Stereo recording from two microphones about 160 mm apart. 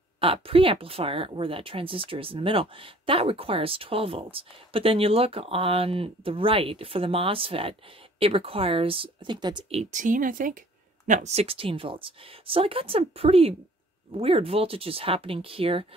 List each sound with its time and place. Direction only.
0.2 s speech: 35° right (ahead or behind)
9.8 s speech: 50° right (ahead or behind)
11.1 s speech: 50° right (ahead or behind)